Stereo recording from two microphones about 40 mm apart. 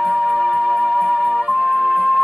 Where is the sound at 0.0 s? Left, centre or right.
Right.